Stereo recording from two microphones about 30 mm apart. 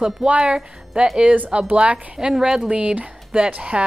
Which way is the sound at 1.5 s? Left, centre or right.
Right.